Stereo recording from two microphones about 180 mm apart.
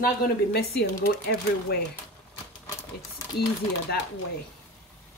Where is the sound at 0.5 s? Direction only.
60° left (ahead or behind).